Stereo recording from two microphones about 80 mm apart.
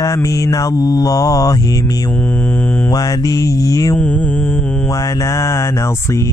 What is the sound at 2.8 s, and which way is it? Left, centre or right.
Mantra, left.